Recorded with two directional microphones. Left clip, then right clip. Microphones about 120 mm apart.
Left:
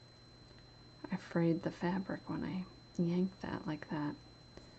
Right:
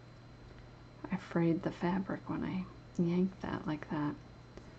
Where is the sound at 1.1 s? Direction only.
35° left (ahead or behind).